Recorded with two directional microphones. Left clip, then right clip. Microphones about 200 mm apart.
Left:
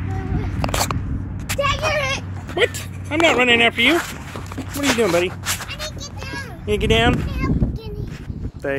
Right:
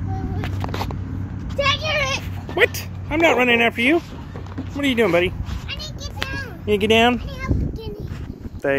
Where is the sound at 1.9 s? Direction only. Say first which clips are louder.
Left 1 dB; 35° left (ahead or behind).